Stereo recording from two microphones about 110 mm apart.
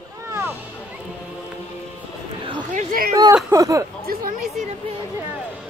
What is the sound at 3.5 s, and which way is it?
Speech, 30° right (ahead or behind).